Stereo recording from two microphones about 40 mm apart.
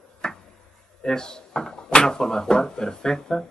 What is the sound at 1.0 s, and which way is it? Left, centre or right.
Speech, centre.